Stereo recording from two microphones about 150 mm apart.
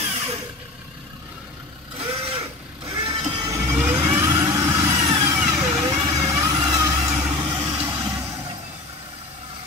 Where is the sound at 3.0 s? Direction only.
35° right (ahead or behind).